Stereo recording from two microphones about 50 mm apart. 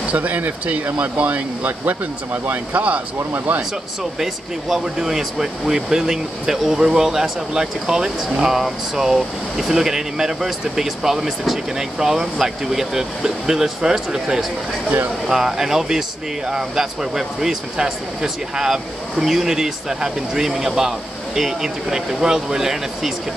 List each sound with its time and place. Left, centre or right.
0.1 s speech: right
4.2 s speech: centre